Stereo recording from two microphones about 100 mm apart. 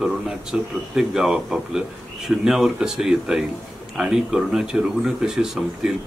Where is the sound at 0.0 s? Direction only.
5° right (ahead or behind).